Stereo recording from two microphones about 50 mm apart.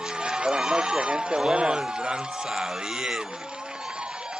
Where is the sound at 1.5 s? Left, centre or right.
Centre.